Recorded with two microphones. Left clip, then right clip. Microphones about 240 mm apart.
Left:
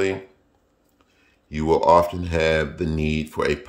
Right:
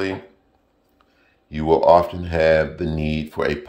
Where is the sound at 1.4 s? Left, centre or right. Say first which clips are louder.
Right 2 dB; centre.